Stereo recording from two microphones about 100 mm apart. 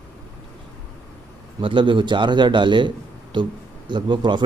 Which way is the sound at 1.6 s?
55° right (ahead or behind).